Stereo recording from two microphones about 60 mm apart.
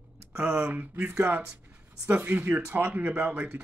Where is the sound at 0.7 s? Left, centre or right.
Right.